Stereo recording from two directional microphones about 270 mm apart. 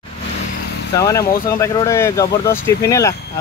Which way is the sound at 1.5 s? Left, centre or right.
Centre.